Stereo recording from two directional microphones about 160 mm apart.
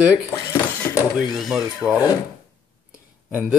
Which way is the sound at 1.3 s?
Centre (ahead or behind).